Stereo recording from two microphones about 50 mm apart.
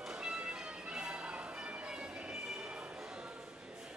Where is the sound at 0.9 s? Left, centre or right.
Centre.